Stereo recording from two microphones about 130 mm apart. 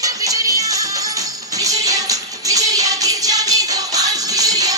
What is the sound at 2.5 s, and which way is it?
Music, 25° right (ahead or behind).